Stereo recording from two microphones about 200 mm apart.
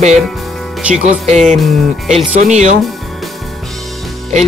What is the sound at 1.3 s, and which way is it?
Speech, 35° right (ahead or behind).